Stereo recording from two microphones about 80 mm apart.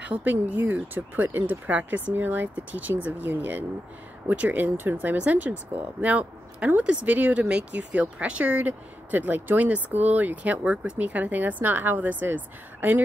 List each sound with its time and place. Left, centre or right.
0.0 s a woman's voice: centre